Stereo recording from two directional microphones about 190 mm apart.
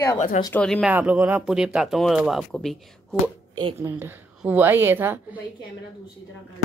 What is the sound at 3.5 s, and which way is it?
A woman's voice, 20° right (ahead or behind).